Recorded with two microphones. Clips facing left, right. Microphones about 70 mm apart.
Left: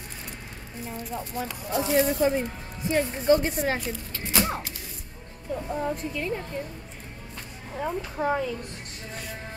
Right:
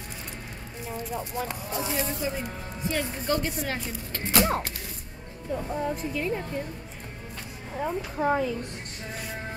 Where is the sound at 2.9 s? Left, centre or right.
Left.